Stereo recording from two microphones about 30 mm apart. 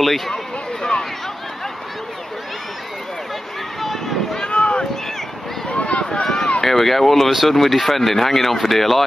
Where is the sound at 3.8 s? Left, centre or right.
Centre.